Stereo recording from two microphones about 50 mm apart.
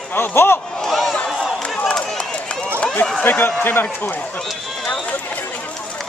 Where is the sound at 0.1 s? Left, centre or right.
Left.